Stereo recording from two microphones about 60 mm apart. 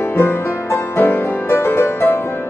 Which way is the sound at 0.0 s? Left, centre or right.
Left.